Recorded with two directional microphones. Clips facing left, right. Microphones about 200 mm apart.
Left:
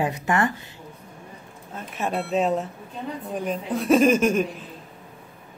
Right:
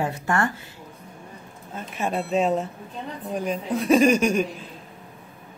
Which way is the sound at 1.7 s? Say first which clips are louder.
Even; centre (ahead or behind).